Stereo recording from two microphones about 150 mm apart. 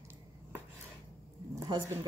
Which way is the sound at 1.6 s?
30° right (ahead or behind).